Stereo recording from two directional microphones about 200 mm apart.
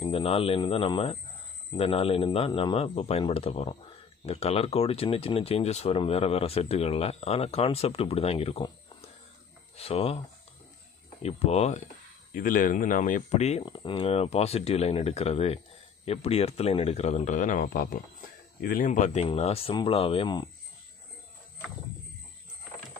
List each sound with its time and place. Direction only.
0.0 s speech: 30° left (ahead or behind)
11.2 s speech: 30° left (ahead or behind)